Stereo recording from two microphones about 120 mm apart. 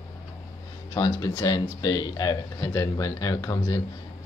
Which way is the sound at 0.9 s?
30° left (ahead or behind).